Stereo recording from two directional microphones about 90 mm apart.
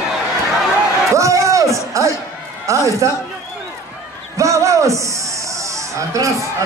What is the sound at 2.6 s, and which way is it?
Speech, 35° right (ahead or behind).